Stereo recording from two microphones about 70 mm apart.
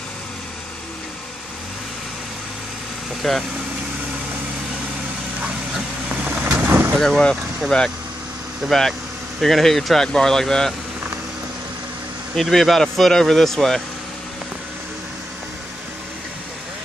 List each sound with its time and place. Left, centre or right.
3.2 s speech: centre
6.2 s vehicle: centre
6.7 s vehicle: right
7.0 s speech: centre
12.4 s speech: centre